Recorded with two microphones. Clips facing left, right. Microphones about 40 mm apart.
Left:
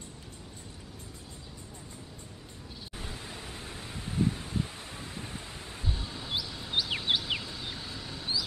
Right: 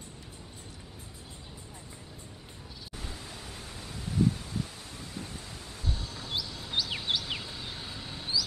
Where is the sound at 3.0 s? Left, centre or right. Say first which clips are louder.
Left 2 dB; left.